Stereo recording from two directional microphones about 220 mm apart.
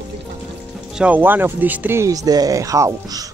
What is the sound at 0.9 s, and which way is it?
Speech, 5° right (ahead or behind).